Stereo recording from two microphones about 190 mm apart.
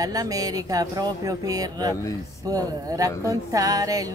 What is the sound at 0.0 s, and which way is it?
Speech, 20° right (ahead or behind).